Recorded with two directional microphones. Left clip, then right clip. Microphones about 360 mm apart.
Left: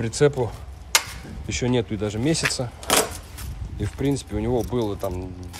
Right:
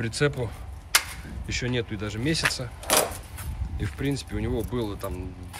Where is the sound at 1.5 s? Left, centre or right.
Centre.